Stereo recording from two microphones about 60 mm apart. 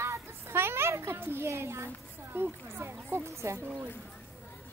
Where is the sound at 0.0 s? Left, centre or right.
Right.